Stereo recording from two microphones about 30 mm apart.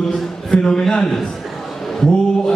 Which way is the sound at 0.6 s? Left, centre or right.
Left.